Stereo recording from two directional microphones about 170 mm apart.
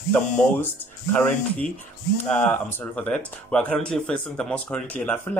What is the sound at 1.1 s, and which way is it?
Speech, 10° left (ahead or behind).